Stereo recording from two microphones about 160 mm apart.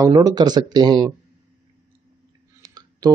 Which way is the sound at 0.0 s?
25° right (ahead or behind).